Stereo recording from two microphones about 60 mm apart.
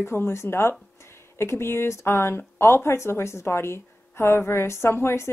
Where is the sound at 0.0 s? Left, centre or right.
Left.